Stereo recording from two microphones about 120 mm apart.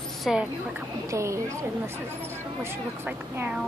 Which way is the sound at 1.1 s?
25° right (ahead or behind).